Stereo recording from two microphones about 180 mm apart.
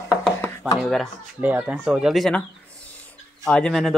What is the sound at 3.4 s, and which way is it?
Speech, 5° left (ahead or behind).